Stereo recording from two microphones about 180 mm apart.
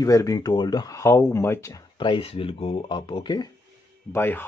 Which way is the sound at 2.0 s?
30° left (ahead or behind).